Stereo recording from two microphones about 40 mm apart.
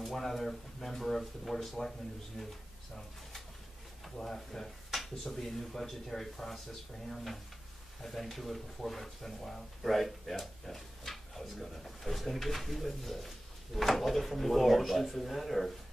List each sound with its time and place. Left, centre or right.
0.0 s speech: centre
4.0 s speech: centre
8.0 s speech: centre